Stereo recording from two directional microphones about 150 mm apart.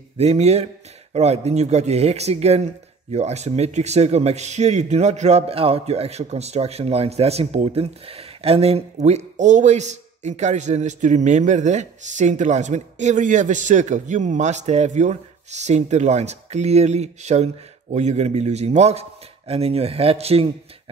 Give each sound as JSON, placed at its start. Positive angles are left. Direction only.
{"t": 0.2, "sound": "speech", "side_deg": -45}